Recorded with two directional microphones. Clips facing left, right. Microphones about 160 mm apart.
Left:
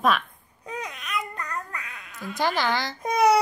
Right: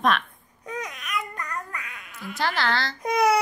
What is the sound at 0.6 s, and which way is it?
Babbling, 30° left (ahead or behind).